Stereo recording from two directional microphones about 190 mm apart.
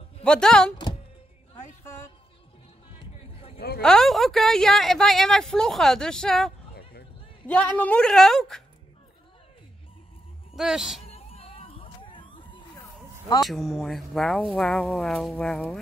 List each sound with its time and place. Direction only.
0.2 s a woman's voice: 5° left (ahead or behind)
3.0 s a sound: 30° left (ahead or behind)
3.5 s speech: 55° left (ahead or behind)
3.8 s a woman's voice: centre (ahead or behind)
10.5 s speech: centre (ahead or behind)
11.1 s a sound: 30° left (ahead or behind)
13.4 s a woman's voice: centre (ahead or behind)